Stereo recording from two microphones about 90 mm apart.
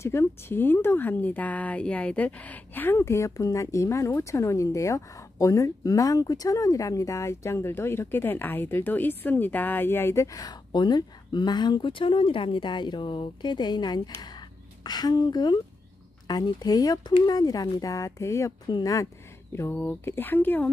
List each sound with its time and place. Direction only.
0.0 s speech: 30° left (ahead or behind)
3.2 s speech: 35° left (ahead or behind)
18.7 s speech: 45° left (ahead or behind)
19.7 s speech: 20° left (ahead or behind)